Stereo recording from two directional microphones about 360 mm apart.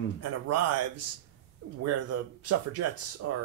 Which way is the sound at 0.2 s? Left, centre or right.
Right.